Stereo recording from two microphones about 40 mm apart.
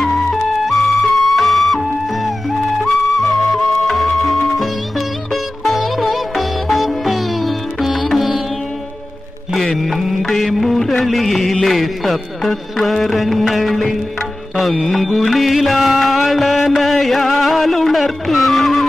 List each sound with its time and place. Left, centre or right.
0.0 s music: centre
9.8 s music: centre